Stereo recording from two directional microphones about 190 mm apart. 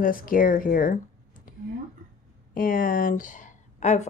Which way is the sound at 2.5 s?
45° left (ahead or behind).